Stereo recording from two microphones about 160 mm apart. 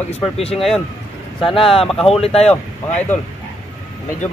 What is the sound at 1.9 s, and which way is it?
Speech, centre (ahead or behind).